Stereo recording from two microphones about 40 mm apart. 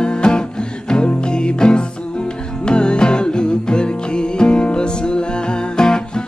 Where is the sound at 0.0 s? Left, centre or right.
Left.